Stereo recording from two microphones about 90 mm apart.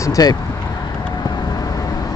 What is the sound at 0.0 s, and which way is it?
Speech, 40° left (ahead or behind).